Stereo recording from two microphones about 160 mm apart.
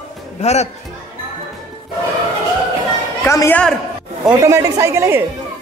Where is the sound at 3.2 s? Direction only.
15° left (ahead or behind).